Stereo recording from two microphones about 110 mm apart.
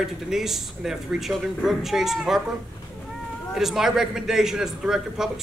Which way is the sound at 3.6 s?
5° right (ahead or behind).